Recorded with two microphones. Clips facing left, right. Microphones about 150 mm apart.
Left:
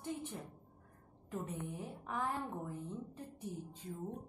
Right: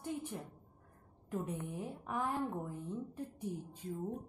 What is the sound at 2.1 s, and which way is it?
A woman's voice, 10° right (ahead or behind).